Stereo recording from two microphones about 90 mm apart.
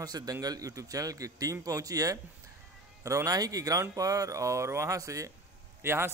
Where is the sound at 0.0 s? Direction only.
45° right (ahead or behind).